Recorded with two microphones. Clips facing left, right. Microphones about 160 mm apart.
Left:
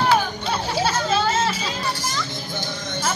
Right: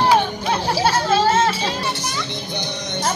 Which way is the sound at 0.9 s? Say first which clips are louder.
Right 4 dB; 30° right (ahead or behind).